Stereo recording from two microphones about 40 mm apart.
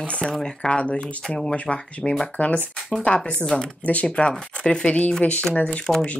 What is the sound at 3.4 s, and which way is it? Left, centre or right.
Speech, centre.